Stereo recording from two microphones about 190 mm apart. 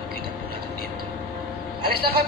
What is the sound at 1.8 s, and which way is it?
Vehicle, 55° right (ahead or behind).